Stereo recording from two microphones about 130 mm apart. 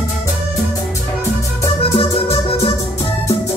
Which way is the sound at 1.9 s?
50° left (ahead or behind).